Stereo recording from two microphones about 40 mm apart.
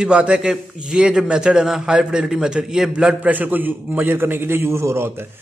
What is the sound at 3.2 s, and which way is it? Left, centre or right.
A man's voice, right.